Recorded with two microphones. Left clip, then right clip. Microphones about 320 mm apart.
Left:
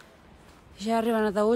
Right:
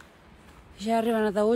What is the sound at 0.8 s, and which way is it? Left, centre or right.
Speech, centre.